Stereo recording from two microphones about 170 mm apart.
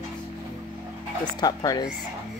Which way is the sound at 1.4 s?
25° left (ahead or behind).